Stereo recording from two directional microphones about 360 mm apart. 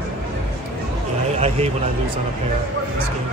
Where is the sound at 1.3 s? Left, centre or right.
Centre.